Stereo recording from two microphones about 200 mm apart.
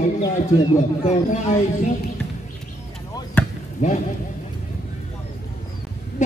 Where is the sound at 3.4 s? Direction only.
10° left (ahead or behind).